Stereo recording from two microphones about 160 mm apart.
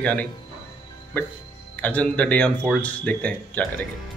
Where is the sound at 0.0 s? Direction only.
10° left (ahead or behind).